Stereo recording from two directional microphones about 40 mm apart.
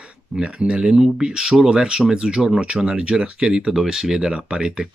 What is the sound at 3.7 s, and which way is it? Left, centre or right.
Speech, centre.